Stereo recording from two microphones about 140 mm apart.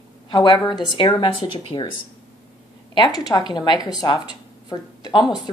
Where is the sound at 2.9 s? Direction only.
30° left (ahead or behind).